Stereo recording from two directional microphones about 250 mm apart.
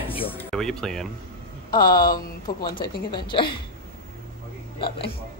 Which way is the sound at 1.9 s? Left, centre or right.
Left.